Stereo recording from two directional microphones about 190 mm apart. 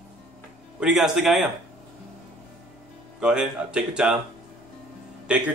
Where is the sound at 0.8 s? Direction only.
5° right (ahead or behind).